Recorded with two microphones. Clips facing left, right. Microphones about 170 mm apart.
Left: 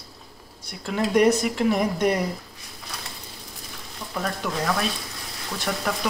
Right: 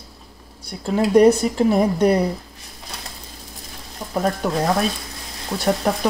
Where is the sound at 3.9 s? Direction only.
40° right (ahead or behind).